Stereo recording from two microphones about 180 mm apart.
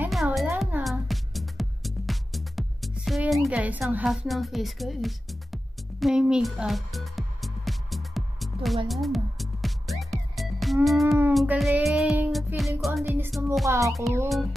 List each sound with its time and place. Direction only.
0.1 s music: centre (ahead or behind)
13.7 s music: 15° right (ahead or behind)